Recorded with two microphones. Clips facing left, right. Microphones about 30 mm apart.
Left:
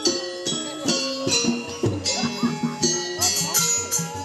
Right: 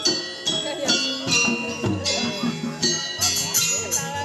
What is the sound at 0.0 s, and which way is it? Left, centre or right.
Music, right.